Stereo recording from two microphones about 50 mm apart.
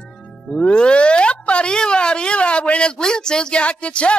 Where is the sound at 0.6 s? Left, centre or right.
Left.